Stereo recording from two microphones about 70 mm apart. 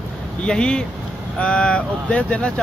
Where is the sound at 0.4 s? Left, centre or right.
Centre.